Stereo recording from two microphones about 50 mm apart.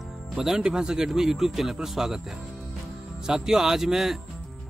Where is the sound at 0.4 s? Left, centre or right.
Centre.